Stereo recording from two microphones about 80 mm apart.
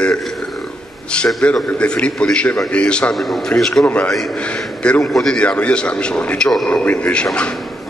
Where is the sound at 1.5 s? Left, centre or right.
Centre.